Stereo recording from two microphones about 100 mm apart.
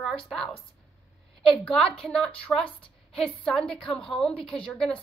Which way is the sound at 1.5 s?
5° left (ahead or behind).